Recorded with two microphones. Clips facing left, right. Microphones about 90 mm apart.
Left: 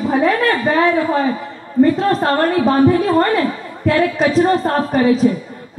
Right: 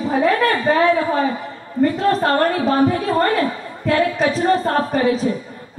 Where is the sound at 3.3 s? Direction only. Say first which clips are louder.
Left 2 dB; 35° right (ahead or behind).